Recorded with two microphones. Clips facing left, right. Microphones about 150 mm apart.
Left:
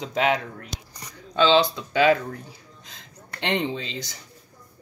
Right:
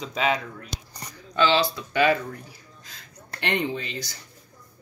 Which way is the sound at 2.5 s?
20° left (ahead or behind).